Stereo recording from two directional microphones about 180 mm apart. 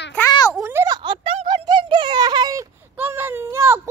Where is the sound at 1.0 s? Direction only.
25° right (ahead or behind).